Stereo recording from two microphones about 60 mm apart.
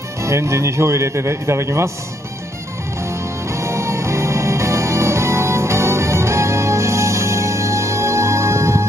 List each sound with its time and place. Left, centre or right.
0.2 s a man's voice: right
3.1 s music: right